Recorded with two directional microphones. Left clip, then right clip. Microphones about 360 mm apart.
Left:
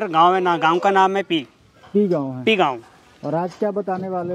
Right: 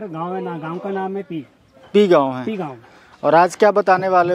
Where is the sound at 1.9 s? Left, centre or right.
Centre.